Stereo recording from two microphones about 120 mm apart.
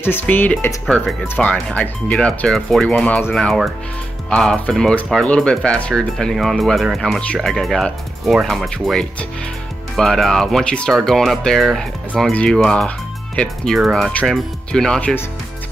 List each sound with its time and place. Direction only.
0.0 s speech: 15° left (ahead or behind)
0.8 s speech: 5° left (ahead or behind)